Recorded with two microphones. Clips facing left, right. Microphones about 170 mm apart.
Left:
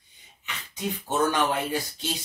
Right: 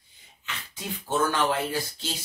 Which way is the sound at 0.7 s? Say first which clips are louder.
Left 1 dB; 20° left (ahead or behind).